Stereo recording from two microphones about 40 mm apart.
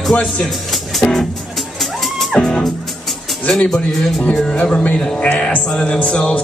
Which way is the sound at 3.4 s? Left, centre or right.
Centre.